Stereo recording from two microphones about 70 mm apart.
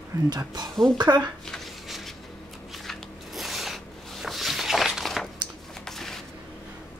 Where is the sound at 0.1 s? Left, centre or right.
Right.